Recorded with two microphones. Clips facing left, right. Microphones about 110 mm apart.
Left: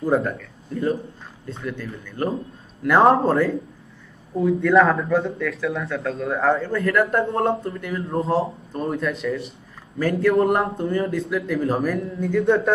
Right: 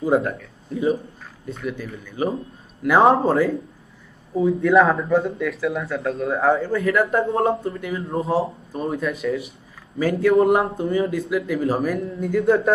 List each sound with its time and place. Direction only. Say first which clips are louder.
0.0 s speech: right 1 dB; centre (ahead or behind)
2.0 s speech: right 1 dB; 5° right (ahead or behind)